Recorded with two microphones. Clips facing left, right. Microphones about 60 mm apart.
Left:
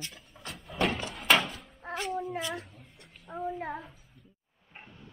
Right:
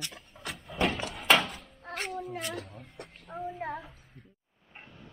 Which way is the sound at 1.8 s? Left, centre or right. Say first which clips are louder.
Left 3 dB; centre.